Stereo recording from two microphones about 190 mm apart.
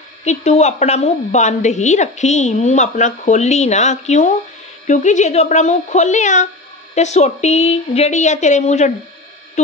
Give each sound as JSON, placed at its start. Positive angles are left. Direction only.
{"t": 0.2, "sound": "a woman's voice", "side_deg": 35}